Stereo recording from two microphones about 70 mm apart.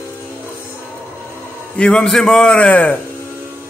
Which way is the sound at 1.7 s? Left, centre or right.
Centre.